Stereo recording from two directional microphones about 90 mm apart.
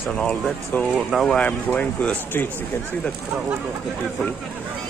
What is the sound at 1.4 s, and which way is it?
Speech, 15° left (ahead or behind).